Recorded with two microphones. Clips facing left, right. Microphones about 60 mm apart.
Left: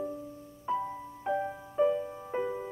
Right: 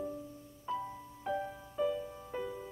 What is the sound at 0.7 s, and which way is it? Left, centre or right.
Music, left.